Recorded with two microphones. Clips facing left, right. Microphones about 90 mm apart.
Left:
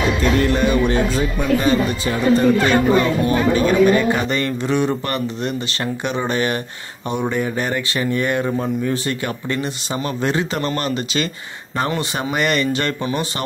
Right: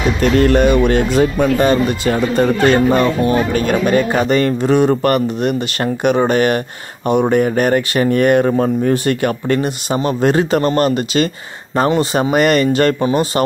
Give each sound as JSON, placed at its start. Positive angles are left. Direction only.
{"t": 0.2, "sound": "speech", "side_deg": -65}
{"t": 3.6, "sound": "speech", "side_deg": -45}